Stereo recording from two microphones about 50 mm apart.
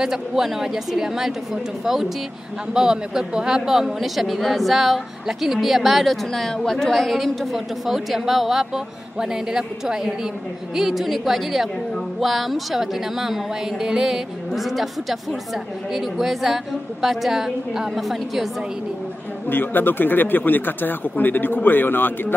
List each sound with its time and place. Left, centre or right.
0.0 s a woman's voice: centre
19.5 s speech: left